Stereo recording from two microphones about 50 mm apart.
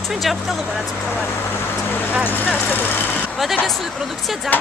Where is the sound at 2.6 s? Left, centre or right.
Left.